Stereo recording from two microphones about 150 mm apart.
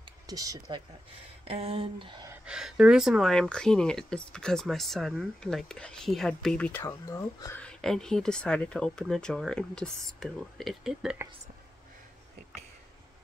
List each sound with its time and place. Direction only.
0.3 s speech: 25° right (ahead or behind)
1.4 s speech: 40° right (ahead or behind)
2.4 s speech: 5° right (ahead or behind); by 7.6 s 20° left (ahead or behind)
7.6 s speech: 5° left (ahead or behind)